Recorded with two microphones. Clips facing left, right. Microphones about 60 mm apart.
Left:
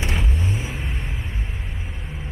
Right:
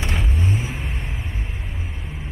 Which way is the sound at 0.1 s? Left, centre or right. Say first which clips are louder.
Right 2 dB; centre.